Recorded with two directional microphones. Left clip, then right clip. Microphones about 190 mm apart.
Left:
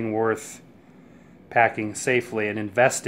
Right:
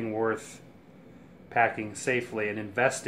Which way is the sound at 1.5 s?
55° left (ahead or behind).